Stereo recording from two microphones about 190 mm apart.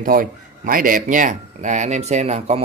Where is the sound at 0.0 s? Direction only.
45° right (ahead or behind).